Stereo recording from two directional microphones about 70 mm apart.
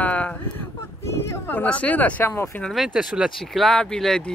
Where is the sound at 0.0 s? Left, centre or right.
Centre.